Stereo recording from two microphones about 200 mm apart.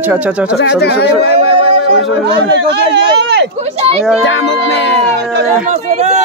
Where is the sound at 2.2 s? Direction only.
60° right (ahead or behind).